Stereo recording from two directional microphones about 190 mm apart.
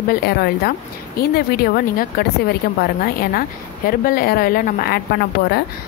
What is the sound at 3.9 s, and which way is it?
Speech, 50° left (ahead or behind).